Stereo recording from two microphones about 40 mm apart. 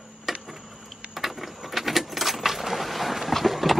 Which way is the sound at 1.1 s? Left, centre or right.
Centre.